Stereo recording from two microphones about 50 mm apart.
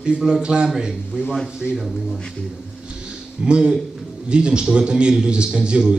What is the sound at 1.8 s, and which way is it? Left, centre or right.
Speech, centre.